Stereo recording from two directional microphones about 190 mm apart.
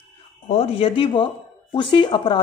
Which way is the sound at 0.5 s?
30° left (ahead or behind).